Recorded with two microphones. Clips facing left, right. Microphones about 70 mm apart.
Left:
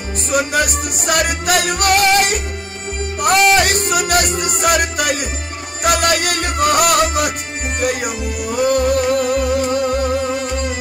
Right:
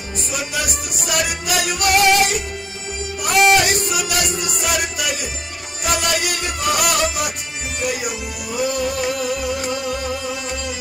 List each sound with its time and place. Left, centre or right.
0.3 s music: left